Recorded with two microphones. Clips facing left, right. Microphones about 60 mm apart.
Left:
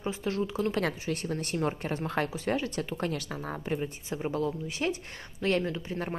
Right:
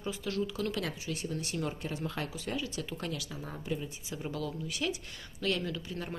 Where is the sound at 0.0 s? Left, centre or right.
Left.